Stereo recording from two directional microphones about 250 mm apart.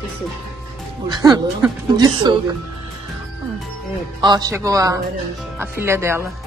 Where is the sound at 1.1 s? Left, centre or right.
Centre.